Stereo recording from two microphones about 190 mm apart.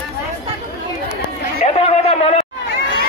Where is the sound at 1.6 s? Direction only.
35° left (ahead or behind).